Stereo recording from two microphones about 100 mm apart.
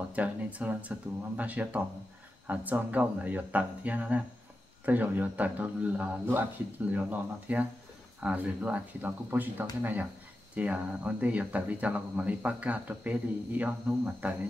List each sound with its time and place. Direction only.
0.1 s speech: 15° right (ahead or behind)